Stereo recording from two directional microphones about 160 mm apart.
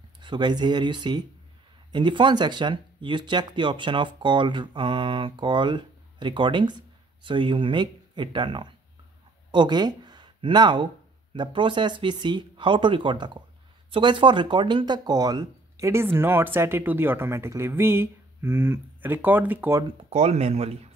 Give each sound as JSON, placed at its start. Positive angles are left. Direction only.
{"t": 0.2, "sound": "speech", "side_deg": -30}
{"t": 20.1, "sound": "speech", "side_deg": -40}